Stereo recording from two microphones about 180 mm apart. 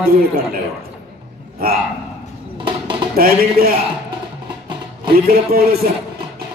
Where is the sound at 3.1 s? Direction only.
55° right (ahead or behind).